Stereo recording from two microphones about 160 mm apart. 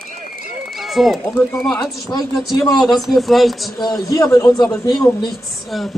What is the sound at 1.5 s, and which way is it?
A woman's voice, 5° left (ahead or behind).